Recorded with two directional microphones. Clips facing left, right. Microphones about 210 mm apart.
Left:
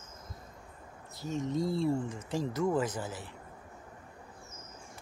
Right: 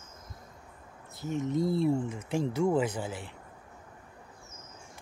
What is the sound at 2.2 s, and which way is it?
Speech, 25° right (ahead or behind).